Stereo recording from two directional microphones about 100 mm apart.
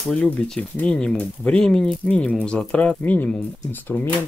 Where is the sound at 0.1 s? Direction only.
15° left (ahead or behind).